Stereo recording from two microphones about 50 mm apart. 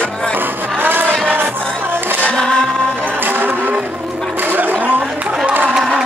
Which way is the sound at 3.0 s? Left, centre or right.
Right.